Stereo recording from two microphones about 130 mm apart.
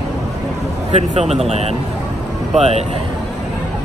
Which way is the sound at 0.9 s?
60° right (ahead or behind).